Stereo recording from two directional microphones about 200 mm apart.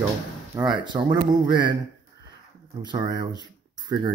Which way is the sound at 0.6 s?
25° right (ahead or behind).